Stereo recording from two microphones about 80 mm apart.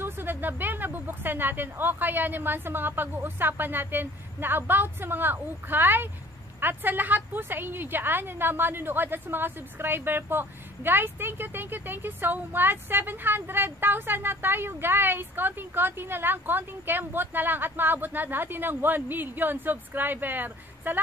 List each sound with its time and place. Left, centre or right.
0.0 s a woman's voice: right